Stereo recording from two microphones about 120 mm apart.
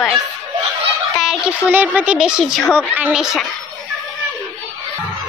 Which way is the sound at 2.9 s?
15° right (ahead or behind).